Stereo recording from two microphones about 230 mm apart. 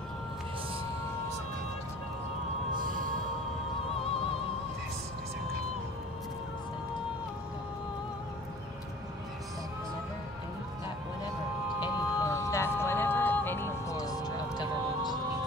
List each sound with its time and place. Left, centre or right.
2.7 s music: right
11.8 s vehicle: centre